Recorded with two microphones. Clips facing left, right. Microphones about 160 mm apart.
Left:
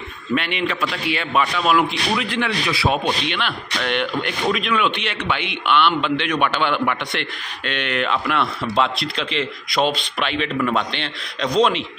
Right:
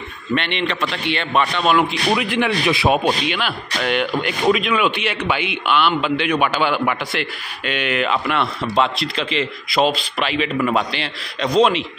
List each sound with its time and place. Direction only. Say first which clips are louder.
0.3 s speech: right 1 dB; 5° left (ahead or behind)
2.0 s speech: right 3 dB; 15° right (ahead or behind)
3.3 s speech: right 2 dB; 5° right (ahead or behind)